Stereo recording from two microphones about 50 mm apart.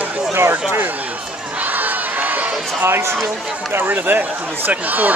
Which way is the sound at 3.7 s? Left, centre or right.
Right.